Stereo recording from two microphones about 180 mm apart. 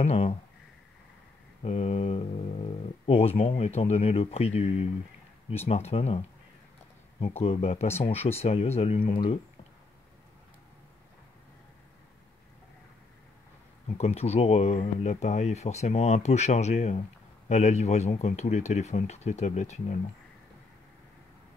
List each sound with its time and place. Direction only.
0.0 s speech: 35° left (ahead or behind)
1.6 s speech: 35° left (ahead or behind)
13.9 s speech: 35° left (ahead or behind)